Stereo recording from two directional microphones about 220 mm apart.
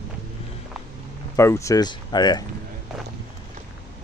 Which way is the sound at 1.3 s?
15° left (ahead or behind).